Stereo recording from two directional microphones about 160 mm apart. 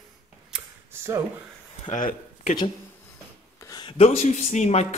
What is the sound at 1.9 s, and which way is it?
Speech, 60° left (ahead or behind).